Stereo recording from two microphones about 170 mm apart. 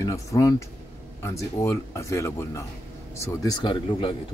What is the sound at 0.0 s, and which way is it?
Speech, 20° left (ahead or behind).